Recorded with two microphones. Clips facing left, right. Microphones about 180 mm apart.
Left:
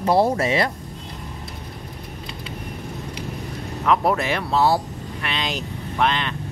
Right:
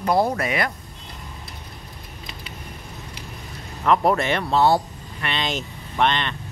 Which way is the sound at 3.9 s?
Centre (ahead or behind).